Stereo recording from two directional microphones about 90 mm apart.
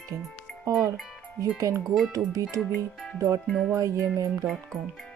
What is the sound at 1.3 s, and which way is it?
Speech, 35° right (ahead or behind).